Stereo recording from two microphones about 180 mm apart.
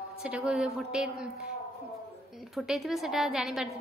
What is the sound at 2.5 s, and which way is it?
A woman's voice, centre (ahead or behind).